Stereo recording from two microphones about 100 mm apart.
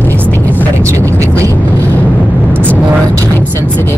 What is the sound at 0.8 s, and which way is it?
Vehicle, 30° right (ahead or behind).